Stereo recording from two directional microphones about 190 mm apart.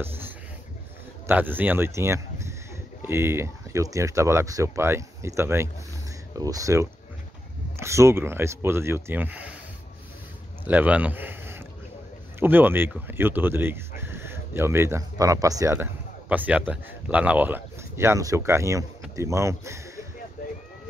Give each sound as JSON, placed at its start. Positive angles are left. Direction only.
{"t": 1.2, "sound": "speech", "side_deg": -10}
{"t": 10.6, "sound": "speech", "side_deg": -10}
{"t": 20.4, "sound": "a sound", "side_deg": 45}